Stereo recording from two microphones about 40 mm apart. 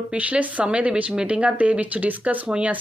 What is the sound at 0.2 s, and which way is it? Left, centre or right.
Speech, right.